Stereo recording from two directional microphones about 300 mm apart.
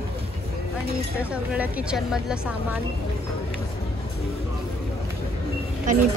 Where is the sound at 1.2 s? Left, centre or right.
Centre.